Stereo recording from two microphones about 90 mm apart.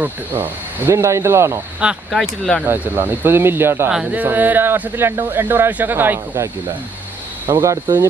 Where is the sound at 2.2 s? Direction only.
5° left (ahead or behind).